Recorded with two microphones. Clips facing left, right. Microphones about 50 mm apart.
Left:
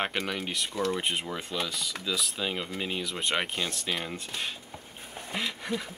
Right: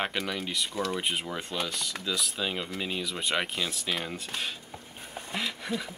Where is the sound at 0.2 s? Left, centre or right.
Centre.